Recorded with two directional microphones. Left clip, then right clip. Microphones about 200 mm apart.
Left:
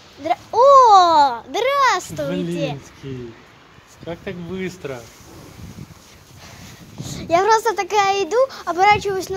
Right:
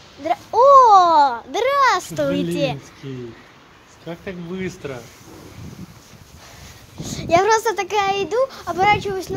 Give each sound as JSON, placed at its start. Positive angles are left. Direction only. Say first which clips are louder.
{"t": 0.2, "sound": "a sound", "louder": "even", "side_deg": 0}
{"t": 2.1, "sound": "a child's voice", "louder": "right 3 dB", "side_deg": -45}
{"t": 3.0, "sound": "a child's voice", "louder": "even", "side_deg": 20}
{"t": 7.0, "sound": "a child's voice", "louder": "right 1 dB", "side_deg": 0}